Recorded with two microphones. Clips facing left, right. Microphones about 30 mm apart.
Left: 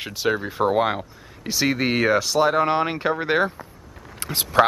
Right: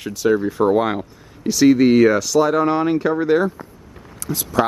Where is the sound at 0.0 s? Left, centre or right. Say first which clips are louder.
Right 6 dB; left.